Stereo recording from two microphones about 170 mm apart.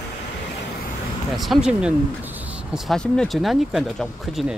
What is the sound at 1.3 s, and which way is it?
Speech, centre (ahead or behind).